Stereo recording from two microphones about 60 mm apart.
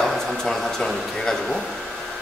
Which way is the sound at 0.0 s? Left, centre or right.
Centre.